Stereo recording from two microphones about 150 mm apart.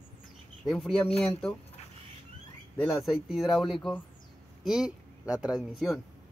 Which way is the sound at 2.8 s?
Centre (ahead or behind).